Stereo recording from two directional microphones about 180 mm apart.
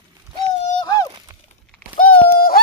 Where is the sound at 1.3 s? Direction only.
20° right (ahead or behind).